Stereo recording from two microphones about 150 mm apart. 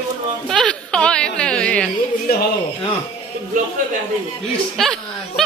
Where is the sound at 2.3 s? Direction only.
90° left.